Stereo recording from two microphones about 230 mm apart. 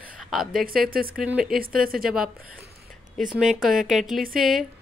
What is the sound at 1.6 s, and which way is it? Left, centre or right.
Speech, right.